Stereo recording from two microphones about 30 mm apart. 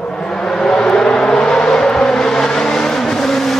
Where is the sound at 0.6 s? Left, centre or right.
Left.